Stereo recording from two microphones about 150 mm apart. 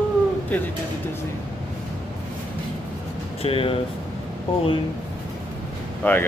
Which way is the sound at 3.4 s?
40° left (ahead or behind).